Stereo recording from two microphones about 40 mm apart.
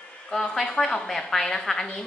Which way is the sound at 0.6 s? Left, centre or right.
Centre.